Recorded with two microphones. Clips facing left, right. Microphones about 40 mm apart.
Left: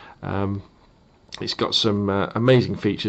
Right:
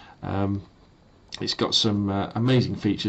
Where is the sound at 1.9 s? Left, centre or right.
Left.